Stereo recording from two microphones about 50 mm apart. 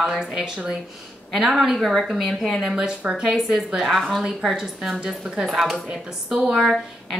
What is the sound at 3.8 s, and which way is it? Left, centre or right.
A woman's voice, centre.